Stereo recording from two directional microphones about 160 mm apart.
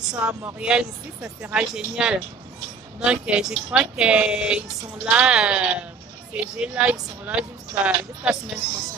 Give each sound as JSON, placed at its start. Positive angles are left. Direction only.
{"t": 0.0, "sound": "speech", "side_deg": -5}